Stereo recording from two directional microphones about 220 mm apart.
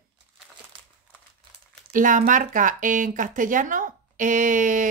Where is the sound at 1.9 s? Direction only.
35° right (ahead or behind).